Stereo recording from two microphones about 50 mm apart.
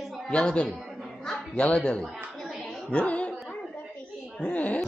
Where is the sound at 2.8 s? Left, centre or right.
Left.